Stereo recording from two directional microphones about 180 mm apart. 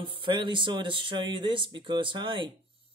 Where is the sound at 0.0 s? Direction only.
30° right (ahead or behind).